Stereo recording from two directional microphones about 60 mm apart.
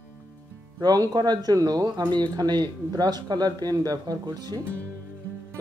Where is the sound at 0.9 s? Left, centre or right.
Right.